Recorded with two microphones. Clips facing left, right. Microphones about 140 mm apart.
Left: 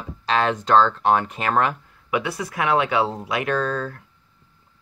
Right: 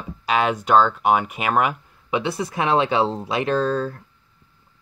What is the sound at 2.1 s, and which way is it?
Speech, 25° right (ahead or behind).